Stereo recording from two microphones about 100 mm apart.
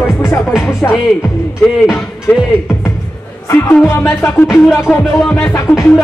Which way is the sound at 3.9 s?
25° left (ahead or behind).